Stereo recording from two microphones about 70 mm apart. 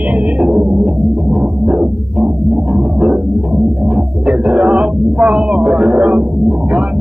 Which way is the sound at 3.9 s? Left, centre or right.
Centre.